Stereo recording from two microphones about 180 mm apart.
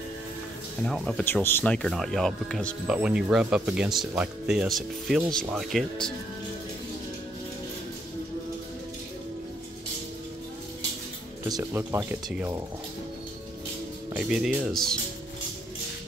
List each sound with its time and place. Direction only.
0.8 s speech: 5° left (ahead or behind)
11.4 s speech: 20° right (ahead or behind)
14.1 s speech: 5° right (ahead or behind)